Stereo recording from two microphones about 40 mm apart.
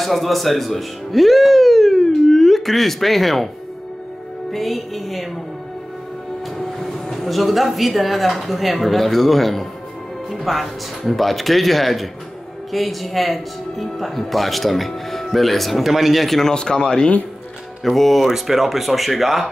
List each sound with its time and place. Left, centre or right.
0.0 s speech: centre
4.5 s speech: centre
6.8 s speech: centre
16.5 s speech: left
17.8 s speech: centre